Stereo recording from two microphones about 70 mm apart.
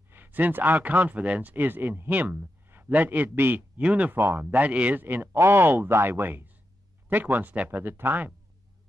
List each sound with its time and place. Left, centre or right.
0.1 s speech: right
4.2 s speech: right
4.5 s speech: right
5.0 s speech: right